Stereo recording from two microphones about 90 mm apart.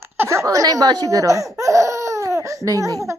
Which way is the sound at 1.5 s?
35° right (ahead or behind).